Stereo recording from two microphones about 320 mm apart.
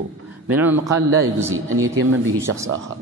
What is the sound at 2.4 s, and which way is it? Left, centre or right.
Speech, centre.